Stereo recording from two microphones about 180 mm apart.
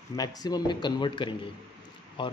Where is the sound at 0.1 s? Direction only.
20° left (ahead or behind).